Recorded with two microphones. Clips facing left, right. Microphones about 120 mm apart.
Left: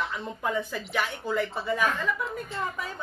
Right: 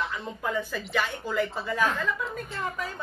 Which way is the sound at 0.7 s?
Centre (ahead or behind).